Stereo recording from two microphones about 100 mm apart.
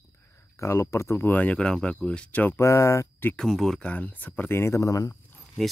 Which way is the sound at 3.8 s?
15° left (ahead or behind).